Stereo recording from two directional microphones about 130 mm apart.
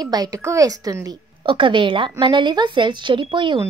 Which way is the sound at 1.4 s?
40° right (ahead or behind).